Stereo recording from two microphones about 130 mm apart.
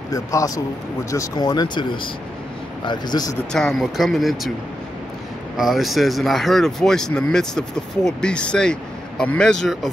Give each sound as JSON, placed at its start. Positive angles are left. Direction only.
{"t": 0.1, "sound": "speech", "side_deg": 25}
{"t": 3.5, "sound": "speech", "side_deg": 0}
{"t": 5.6, "sound": "speech", "side_deg": 0}